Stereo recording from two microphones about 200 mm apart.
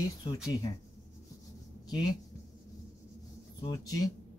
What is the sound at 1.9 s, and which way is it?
Speech, 20° left (ahead or behind).